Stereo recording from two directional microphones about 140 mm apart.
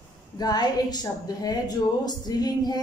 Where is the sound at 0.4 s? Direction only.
30° left (ahead or behind).